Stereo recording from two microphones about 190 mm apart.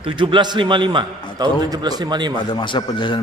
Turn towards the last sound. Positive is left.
turn(degrees=25)  # may be behind; listen again after turning